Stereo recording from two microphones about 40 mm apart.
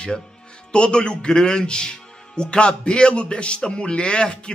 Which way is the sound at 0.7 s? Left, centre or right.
Left.